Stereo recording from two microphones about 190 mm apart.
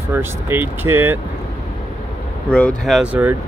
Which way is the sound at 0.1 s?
10° right (ahead or behind).